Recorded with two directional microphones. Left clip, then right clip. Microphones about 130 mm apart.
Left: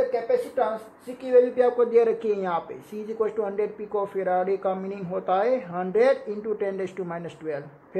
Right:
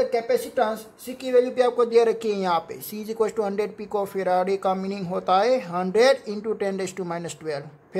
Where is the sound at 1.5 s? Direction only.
35° right (ahead or behind).